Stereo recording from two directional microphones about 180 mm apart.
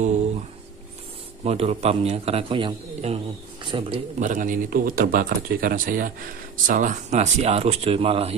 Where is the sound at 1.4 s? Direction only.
35° right (ahead or behind).